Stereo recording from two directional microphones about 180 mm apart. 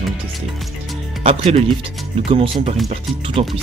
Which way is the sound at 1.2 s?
35° right (ahead or behind).